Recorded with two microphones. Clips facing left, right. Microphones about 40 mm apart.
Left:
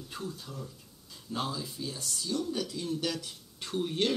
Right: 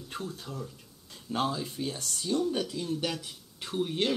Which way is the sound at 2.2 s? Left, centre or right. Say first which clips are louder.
Right 4 dB; right.